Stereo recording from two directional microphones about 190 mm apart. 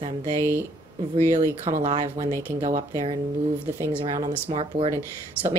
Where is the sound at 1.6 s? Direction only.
35° right (ahead or behind).